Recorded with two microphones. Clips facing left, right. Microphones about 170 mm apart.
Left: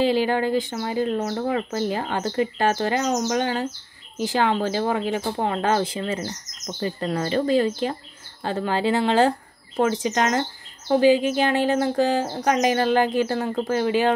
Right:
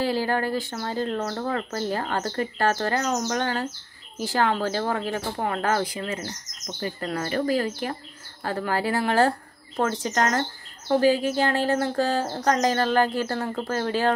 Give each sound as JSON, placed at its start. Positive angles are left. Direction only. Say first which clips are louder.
{"t": 0.0, "sound": "speech", "louder": "left 4 dB", "side_deg": 20}